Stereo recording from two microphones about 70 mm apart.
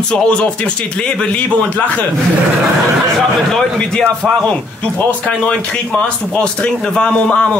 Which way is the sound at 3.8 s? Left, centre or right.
Centre.